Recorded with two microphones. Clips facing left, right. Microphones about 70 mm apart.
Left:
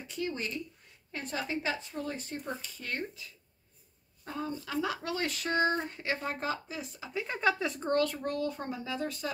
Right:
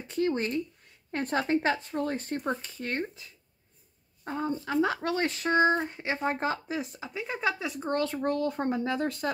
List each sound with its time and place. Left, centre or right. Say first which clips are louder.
0.1 s speech: right 8 dB; right
2.6 s speech: right 5 dB; right
7.2 s speech: left 1 dB; centre
7.9 s speech: even; right
8.2 s speech: right 5 dB; right